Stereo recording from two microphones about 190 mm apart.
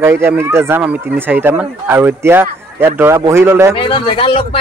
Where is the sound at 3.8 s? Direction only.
25° left (ahead or behind).